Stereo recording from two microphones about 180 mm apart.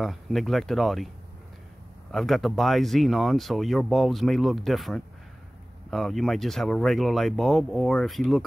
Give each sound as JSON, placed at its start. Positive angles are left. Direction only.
{"t": 0.0, "sound": "speech", "side_deg": 0}
{"t": 2.1, "sound": "speech", "side_deg": 0}